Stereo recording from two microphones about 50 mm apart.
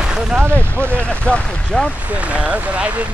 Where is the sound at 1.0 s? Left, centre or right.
Left.